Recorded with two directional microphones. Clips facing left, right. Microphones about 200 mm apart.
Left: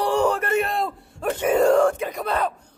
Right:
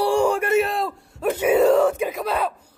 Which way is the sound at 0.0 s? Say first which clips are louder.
Right 2 dB; 10° right (ahead or behind).